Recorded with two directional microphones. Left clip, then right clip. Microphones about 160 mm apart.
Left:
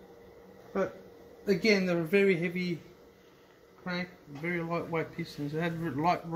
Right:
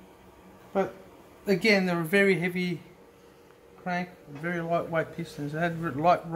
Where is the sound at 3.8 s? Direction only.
20° right (ahead or behind).